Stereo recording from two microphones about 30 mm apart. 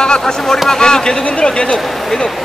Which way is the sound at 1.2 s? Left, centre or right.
Left.